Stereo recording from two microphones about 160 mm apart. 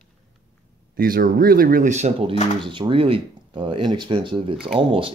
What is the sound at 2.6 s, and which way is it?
Speech, 30° right (ahead or behind).